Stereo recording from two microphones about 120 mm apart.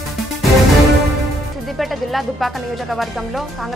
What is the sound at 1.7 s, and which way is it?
Speech, centre (ahead or behind).